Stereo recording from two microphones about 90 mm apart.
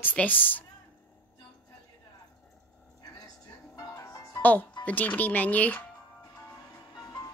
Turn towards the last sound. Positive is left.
turn(degrees=15)  # may be behind; listen again after turning